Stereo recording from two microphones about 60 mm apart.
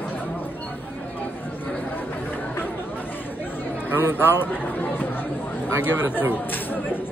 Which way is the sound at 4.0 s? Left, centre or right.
Left.